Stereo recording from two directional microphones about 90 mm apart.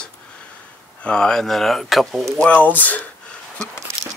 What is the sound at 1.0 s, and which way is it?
Speech, 10° left (ahead or behind).